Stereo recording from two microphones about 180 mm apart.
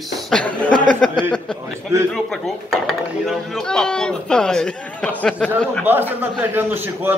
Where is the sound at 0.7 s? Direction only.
45° right (ahead or behind).